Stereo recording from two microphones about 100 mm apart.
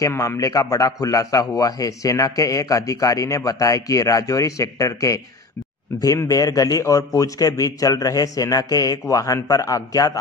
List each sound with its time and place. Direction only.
0.0 s a man's voice: 30° left (ahead or behind)